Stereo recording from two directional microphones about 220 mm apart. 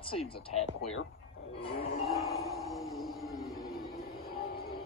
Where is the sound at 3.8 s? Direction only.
45° left (ahead or behind).